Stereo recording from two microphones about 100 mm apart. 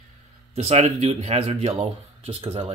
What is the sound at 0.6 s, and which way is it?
Speech, 90° right.